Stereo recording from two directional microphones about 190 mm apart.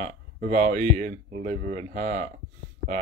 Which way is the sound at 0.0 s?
45° right (ahead or behind).